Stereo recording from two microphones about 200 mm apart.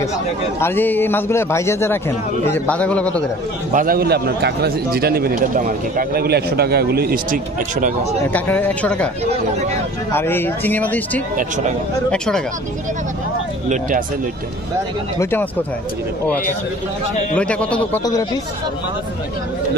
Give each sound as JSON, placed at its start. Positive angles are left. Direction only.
{"t": 0.6, "sound": "a man's voice", "side_deg": 10}
{"t": 3.7, "sound": "a man's voice", "side_deg": -45}
{"t": 8.3, "sound": "a man's voice", "side_deg": 10}
{"t": 10.1, "sound": "a man's voice", "side_deg": 10}
{"t": 11.3, "sound": "speech", "side_deg": -40}
{"t": 12.1, "sound": "a man's voice", "side_deg": 5}
{"t": 13.7, "sound": "speech", "side_deg": -40}
{"t": 17.4, "sound": "a man's voice", "side_deg": 5}